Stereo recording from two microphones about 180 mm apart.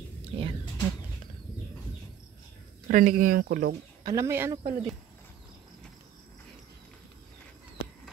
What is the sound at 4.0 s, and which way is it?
Speech, 20° right (ahead or behind).